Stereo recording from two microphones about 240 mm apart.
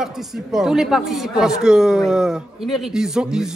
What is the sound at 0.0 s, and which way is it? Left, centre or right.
A man's voice, centre.